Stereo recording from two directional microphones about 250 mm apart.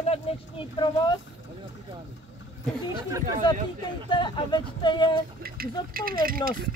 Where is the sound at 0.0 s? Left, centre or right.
Left.